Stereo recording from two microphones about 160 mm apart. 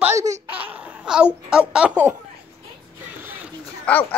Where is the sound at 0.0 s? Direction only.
20° right (ahead or behind).